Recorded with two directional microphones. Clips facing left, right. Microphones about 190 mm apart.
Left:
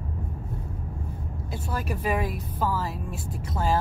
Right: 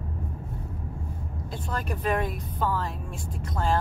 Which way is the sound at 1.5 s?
5° left (ahead or behind).